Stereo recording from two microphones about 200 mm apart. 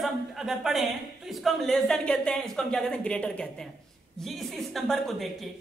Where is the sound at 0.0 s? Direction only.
Centre (ahead or behind).